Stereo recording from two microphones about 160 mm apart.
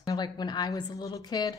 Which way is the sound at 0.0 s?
25° left (ahead or behind).